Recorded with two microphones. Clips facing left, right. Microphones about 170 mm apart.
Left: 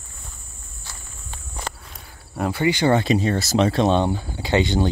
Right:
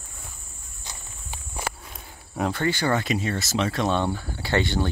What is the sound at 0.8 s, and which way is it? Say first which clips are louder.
Walk: even; 15° right (ahead or behind).